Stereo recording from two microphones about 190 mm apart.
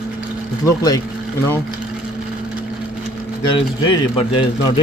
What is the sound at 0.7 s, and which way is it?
Speech, 20° left (ahead or behind).